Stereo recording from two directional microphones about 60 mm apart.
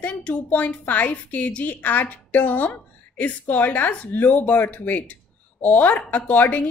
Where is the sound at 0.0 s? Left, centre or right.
Left.